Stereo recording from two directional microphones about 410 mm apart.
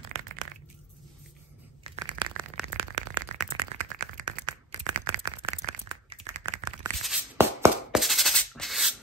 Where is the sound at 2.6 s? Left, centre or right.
Centre.